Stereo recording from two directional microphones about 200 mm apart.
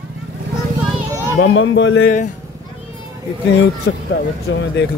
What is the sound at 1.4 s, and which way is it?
Speech, 65° left (ahead or behind).